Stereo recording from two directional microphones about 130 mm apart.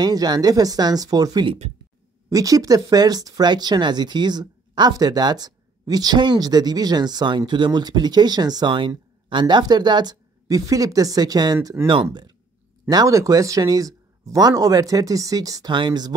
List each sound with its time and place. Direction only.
0.0 s speech: 30° right (ahead or behind)